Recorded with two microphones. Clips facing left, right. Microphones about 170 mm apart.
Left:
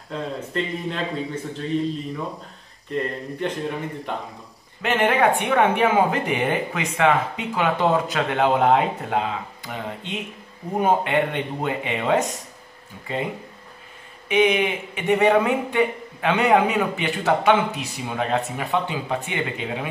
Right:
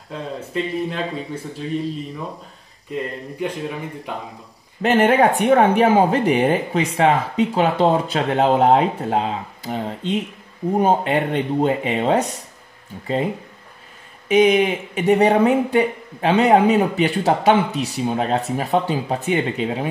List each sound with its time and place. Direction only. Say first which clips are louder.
0.1 s speech: right 1 dB; 5° right (ahead or behind)
2.9 s speech: left 1 dB; 5° right (ahead or behind)
4.8 s speech: right 4 dB; 40° right (ahead or behind)
14.3 s speech: right 5 dB; 40° right (ahead or behind)